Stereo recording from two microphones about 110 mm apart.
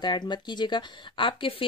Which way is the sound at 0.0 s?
40° left (ahead or behind).